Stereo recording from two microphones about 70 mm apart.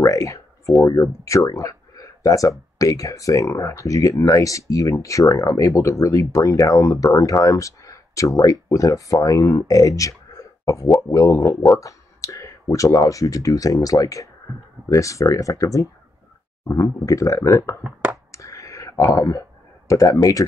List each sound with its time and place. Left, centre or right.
0.0 s a sound: left
1.2 s speech: left
10.6 s a sound: left
11.0 s speech: left
18.3 s whispering: left
19.1 s speech: left